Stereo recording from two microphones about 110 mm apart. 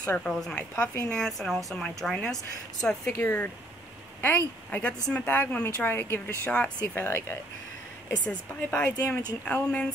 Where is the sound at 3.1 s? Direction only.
15° left (ahead or behind).